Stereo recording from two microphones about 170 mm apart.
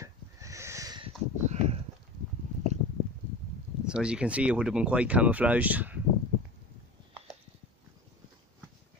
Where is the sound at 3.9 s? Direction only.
5° right (ahead or behind).